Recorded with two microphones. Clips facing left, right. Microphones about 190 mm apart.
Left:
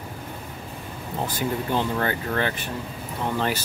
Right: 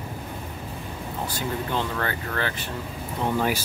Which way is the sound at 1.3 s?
15° left (ahead or behind).